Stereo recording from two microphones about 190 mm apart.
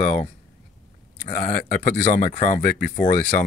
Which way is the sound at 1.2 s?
45° left (ahead or behind).